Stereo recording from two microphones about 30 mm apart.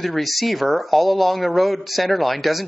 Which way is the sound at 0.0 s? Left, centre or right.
Centre.